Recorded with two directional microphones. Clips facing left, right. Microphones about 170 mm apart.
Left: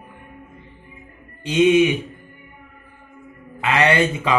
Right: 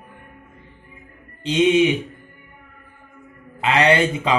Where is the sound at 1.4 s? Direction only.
20° right (ahead or behind).